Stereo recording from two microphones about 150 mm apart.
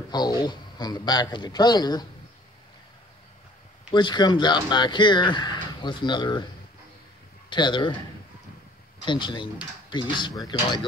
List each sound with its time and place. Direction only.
0.1 s a man's voice: 30° left (ahead or behind)
3.9 s speech: 30° left (ahead or behind)
7.4 s speech: 30° left (ahead or behind)
9.0 s a man's voice: 30° left (ahead or behind)